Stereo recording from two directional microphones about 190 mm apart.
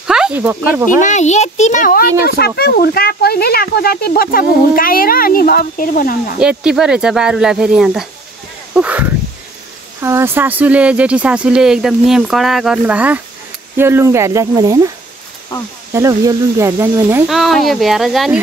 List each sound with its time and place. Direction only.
0.0 s speech: 5° right (ahead or behind)
1.0 s a child's voice: 40° left (ahead or behind)
6.4 s speech: 5° right (ahead or behind)
10.0 s speech: 15° right (ahead or behind)
15.9 s speech: 15° right (ahead or behind)
17.3 s speech: centre (ahead or behind)